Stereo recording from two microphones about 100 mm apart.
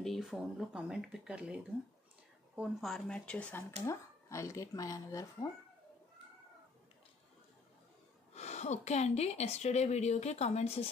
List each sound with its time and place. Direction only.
0.0 s speech: centre (ahead or behind)
2.8 s speech: 5° left (ahead or behind)
3.8 s speech: 30° left (ahead or behind)
8.4 s a woman's voice: 90° left